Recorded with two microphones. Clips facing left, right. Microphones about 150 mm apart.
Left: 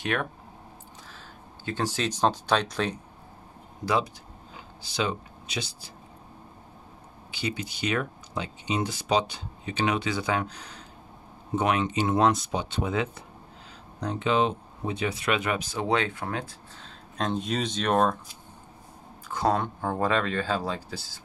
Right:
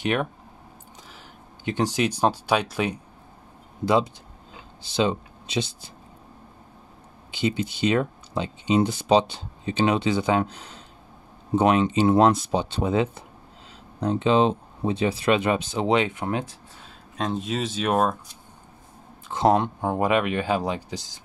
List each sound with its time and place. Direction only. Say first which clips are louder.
0.0 s speech: right 4 dB; 20° right (ahead or behind)
1.6 s speech: right 5 dB; 15° right (ahead or behind)
3.8 s speech: right 5 dB; 25° right (ahead or behind)
7.2 s speech: right 7 dB; 25° right (ahead or behind)
16.8 s speech: right 1 dB; centre (ahead or behind)
19.2 s speech: right 5 dB; 20° right (ahead or behind)